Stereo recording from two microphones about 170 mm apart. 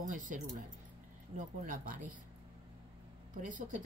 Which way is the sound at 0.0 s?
50° right (ahead or behind).